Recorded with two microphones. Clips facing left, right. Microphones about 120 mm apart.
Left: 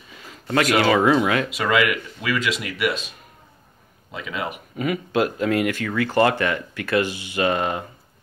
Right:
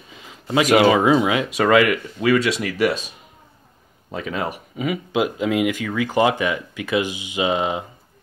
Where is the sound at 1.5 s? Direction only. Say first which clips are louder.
Right 5 dB; 40° right (ahead or behind).